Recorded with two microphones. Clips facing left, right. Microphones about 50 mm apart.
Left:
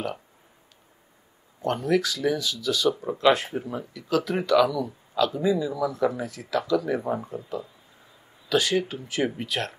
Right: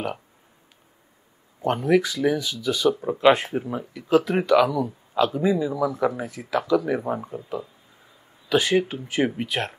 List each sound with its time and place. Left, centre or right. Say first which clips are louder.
1.6 s speech: right 3 dB; centre
6.8 s speech: right 1 dB; centre